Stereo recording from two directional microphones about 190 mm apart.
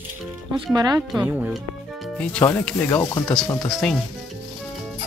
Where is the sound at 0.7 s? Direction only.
20° right (ahead or behind).